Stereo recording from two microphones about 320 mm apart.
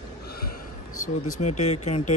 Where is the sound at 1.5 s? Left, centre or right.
Left.